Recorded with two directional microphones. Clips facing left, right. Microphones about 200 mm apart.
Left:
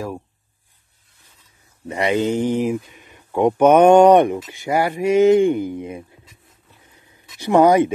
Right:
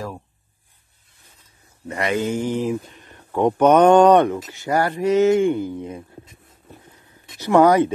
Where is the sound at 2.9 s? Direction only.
10° left (ahead or behind).